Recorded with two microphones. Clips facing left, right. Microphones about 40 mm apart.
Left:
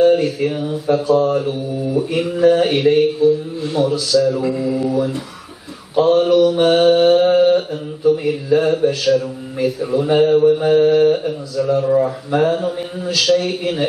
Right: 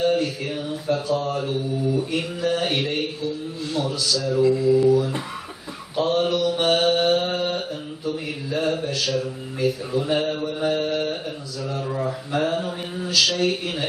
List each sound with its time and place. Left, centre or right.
0.0 s speech: centre
1.0 s mantra: left
2.0 s a man's voice: centre
3.2 s mantra: left
3.6 s a man's voice: centre